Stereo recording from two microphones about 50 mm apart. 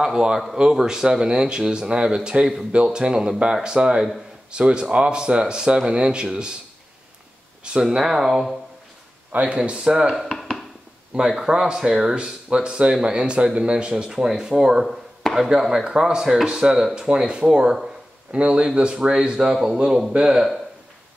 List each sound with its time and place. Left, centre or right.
0.0 s speech: centre
7.8 s speech: centre
9.3 s speech: right
10.1 s a sound: centre
11.1 s speech: centre